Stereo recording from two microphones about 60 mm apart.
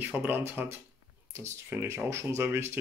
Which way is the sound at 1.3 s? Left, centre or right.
Right.